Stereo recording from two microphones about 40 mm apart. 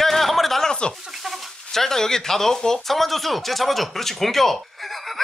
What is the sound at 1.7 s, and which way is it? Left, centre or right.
Speech, centre.